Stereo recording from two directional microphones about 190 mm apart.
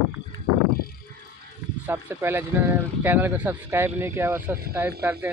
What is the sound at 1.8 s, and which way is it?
Speech, 10° right (ahead or behind).